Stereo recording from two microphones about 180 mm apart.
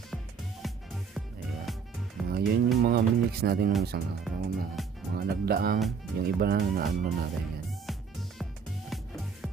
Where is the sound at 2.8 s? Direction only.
55° right (ahead or behind).